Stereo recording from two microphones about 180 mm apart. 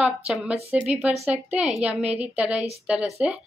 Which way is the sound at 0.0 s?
5° right (ahead or behind).